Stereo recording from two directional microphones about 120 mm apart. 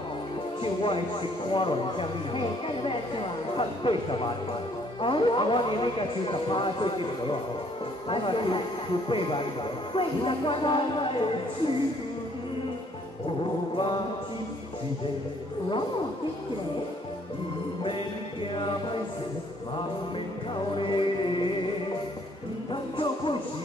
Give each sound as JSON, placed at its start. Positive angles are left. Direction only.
{"t": 0.6, "sound": "speech", "side_deg": 45}
{"t": 20.7, "sound": "music", "side_deg": 45}
{"t": 22.7, "sound": "music", "side_deg": 45}